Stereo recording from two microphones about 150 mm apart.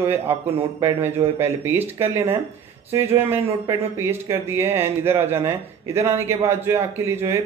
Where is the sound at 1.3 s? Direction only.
15° right (ahead or behind).